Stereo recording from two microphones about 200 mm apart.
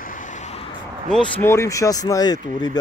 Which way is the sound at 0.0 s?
40° left (ahead or behind).